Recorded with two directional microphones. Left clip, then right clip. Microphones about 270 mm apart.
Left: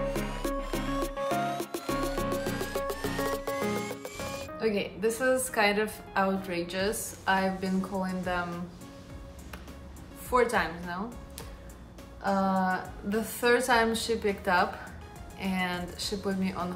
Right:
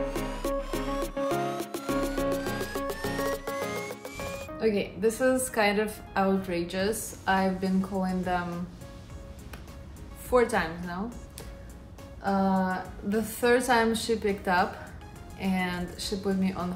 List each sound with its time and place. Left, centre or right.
0.1 s music: centre
10.3 s a woman's voice: centre
12.2 s a woman's voice: centre